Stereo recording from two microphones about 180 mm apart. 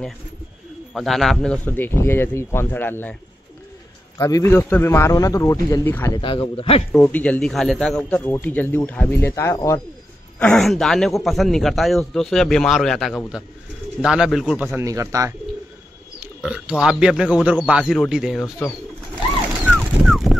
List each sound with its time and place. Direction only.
0.9 s a man's voice: centre (ahead or behind)
4.2 s a man's voice: 15° left (ahead or behind)
6.1 s a man's voice: 30° left (ahead or behind)
6.9 s a man's voice: 10° left (ahead or behind)
10.4 s a man's voice: centre (ahead or behind)
14.8 s speech: 15° right (ahead or behind)
16.4 s a man's voice: 5° right (ahead or behind)
19.6 s a sound: centre (ahead or behind)